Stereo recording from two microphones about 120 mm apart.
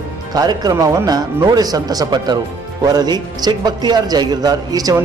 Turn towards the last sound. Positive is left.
turn(degrees=-35)  # may be behind; listen again after turning